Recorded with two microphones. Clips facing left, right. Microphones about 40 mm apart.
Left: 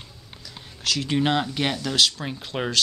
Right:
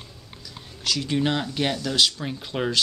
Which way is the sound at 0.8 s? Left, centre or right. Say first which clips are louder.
Left 1 dB; centre.